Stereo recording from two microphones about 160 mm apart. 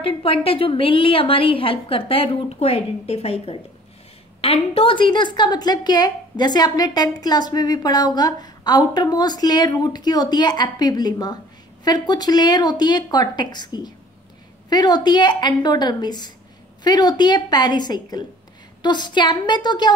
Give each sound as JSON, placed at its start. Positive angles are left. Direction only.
{"t": 0.0, "sound": "a woman's voice", "side_deg": 35}